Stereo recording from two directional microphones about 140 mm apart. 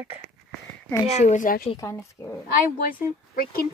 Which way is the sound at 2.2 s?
20° left (ahead or behind).